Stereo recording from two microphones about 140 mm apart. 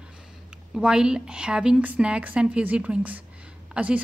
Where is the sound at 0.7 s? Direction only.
5° right (ahead or behind).